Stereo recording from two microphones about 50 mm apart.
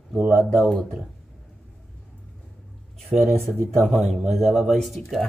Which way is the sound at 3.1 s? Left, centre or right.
Centre.